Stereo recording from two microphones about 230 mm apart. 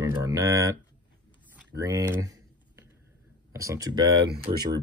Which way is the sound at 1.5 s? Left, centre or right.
Centre.